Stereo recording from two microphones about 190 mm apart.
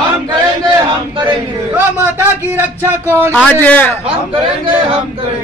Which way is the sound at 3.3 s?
10° left (ahead or behind).